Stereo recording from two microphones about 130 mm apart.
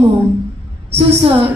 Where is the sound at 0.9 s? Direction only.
45° right (ahead or behind).